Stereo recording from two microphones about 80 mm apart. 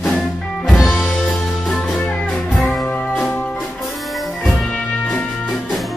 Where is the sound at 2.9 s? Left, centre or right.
Left.